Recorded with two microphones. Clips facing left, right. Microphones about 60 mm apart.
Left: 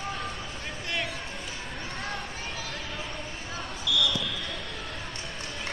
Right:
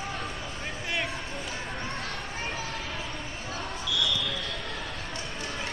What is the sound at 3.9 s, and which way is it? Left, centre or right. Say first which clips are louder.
Basketball bounce: left 4 dB; left.